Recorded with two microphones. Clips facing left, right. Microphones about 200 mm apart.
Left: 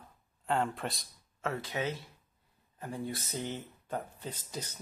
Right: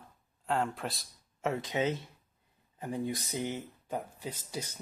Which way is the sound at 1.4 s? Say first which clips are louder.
Right 4 dB; 20° right (ahead or behind).